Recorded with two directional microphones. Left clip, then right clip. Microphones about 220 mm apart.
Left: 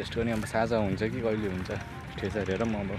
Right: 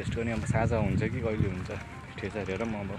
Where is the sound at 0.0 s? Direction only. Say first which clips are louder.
Left 3 dB; 15° left (ahead or behind).